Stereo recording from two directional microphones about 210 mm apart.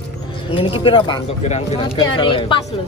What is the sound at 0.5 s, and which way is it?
Speech, 25° left (ahead or behind).